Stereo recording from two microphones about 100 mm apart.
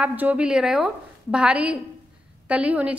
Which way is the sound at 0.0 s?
15° right (ahead or behind).